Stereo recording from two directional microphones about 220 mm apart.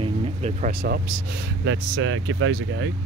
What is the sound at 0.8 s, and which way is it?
Speech, 50° right (ahead or behind).